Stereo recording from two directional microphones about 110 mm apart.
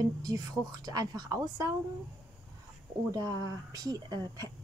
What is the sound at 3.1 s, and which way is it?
Speech, 35° right (ahead or behind).